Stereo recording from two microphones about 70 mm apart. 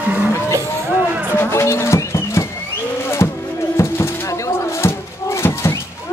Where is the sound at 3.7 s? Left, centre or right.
Left.